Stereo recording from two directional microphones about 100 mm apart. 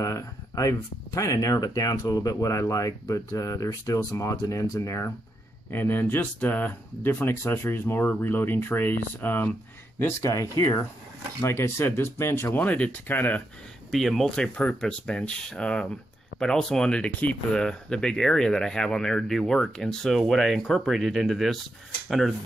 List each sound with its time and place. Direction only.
0.0 s speech: 35° left (ahead or behind)
5.7 s speech: 20° left (ahead or behind)
10.3 s speech: 35° left (ahead or behind); by 13.4 s 15° left (ahead or behind)
13.8 s speech: centre (ahead or behind)